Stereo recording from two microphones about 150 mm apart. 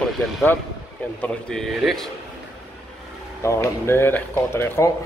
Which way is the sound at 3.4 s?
20° left (ahead or behind).